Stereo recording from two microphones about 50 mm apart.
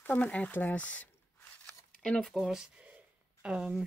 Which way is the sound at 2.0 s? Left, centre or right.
Centre.